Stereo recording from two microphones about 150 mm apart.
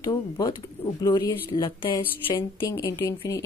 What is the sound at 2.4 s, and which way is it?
Speech, 20° left (ahead or behind).